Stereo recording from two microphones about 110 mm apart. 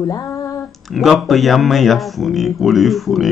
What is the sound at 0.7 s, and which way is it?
Speech, centre (ahead or behind).